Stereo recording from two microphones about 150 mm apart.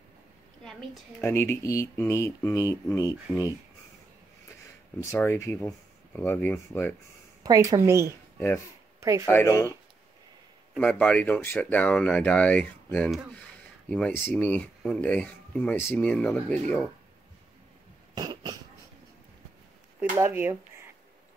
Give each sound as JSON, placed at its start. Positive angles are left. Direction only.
{"t": 0.7, "sound": "a woman's voice", "side_deg": 5}
{"t": 1.2, "sound": "speech", "side_deg": 15}
{"t": 5.1, "sound": "speech", "side_deg": 15}
{"t": 7.4, "sound": "a woman's voice", "side_deg": -25}
{"t": 9.3, "sound": "speech", "side_deg": 20}
{"t": 10.8, "sound": "speech", "side_deg": 10}
{"t": 18.1, "sound": "cough", "side_deg": -25}
{"t": 20.0, "sound": "speech", "side_deg": -15}